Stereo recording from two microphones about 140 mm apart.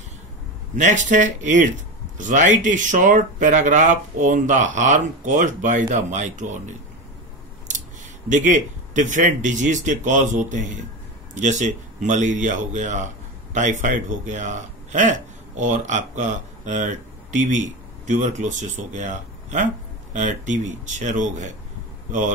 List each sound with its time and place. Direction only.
0.7 s speech: 60° right (ahead or behind)
8.3 s speech: 65° right (ahead or behind)